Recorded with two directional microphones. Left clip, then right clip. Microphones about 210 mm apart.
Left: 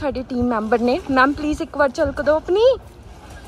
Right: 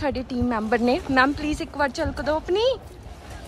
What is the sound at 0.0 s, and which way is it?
Speech, 10° right (ahead or behind).